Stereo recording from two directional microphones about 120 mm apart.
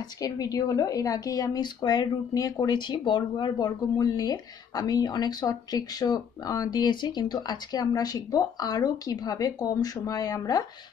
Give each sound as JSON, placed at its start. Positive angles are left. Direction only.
{"t": 0.2, "sound": "a woman's voice", "side_deg": 30}